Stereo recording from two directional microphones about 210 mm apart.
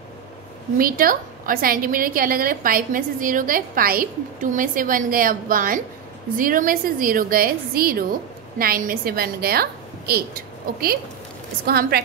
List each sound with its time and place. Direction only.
0.7 s a woman's voice: 40° right (ahead or behind)